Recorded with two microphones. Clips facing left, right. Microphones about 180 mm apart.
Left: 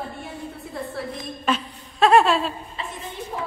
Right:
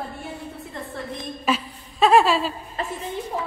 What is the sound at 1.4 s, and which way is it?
Chuckle, centre (ahead or behind).